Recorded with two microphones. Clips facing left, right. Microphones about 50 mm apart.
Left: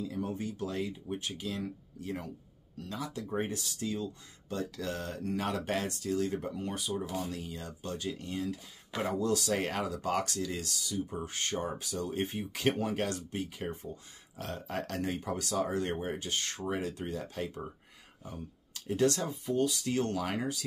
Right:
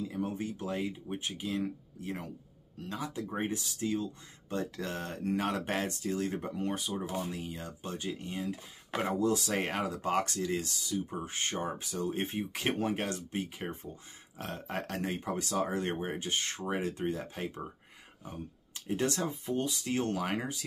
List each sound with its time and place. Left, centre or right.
0.1 s speech: right
5.4 s speech: centre
14.4 s speech: centre